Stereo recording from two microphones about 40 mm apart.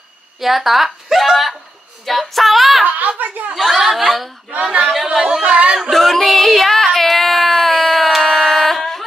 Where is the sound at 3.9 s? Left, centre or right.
Centre.